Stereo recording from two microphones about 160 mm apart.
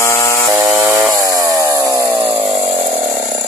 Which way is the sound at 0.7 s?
20° right (ahead or behind).